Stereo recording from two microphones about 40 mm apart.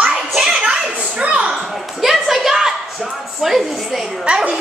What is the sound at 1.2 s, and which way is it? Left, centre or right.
Children playing, right.